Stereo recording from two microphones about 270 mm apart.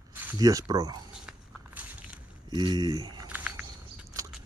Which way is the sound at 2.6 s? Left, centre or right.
Centre.